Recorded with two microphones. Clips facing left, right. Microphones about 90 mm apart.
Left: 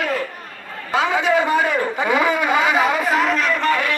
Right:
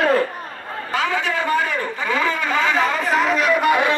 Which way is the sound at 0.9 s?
20° left (ahead or behind).